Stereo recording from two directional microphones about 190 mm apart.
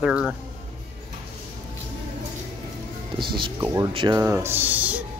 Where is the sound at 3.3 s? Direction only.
20° right (ahead or behind).